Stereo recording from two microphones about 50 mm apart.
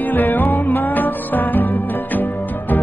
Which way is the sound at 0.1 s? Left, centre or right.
Left.